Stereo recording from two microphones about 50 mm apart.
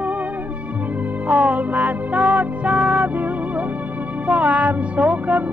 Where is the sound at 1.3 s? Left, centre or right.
Right.